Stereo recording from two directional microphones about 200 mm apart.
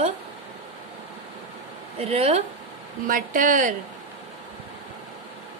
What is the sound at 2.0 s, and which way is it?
Speech, 30° right (ahead or behind).